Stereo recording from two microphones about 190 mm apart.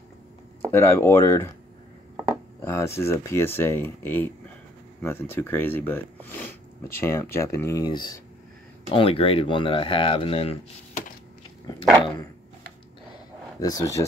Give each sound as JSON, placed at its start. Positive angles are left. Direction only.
{"t": 0.6, "sound": "speech", "side_deg": 10}
{"t": 2.6, "sound": "speech", "side_deg": 15}
{"t": 13.6, "sound": "speech", "side_deg": 20}